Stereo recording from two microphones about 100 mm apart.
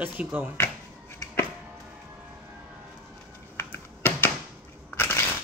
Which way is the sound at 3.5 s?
20° left (ahead or behind).